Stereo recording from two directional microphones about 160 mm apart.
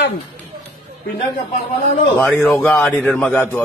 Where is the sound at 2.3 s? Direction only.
Centre (ahead or behind).